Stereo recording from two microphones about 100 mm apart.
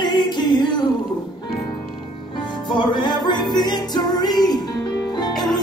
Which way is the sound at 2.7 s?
50° left (ahead or behind).